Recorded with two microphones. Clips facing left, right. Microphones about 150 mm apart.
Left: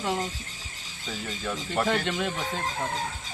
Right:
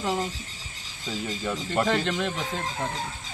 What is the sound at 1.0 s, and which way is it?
Speech, 15° right (ahead or behind).